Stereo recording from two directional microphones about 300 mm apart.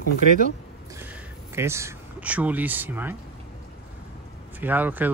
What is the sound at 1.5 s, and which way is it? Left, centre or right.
Speech, centre.